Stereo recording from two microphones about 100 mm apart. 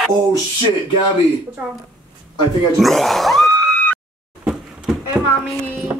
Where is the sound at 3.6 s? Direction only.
15° left (ahead or behind).